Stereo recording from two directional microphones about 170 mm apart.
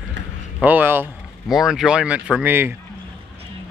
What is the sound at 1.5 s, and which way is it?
Speech, centre (ahead or behind).